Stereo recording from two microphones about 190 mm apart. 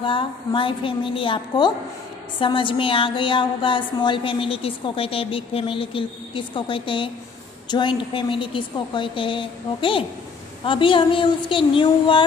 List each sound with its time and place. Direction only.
0.0 s a woman's voice: 25° left (ahead or behind)